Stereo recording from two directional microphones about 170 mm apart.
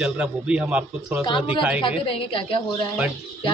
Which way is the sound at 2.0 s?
30° left (ahead or behind).